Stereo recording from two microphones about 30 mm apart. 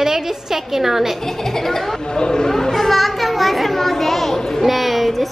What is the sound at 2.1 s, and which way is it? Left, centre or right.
Speech, left.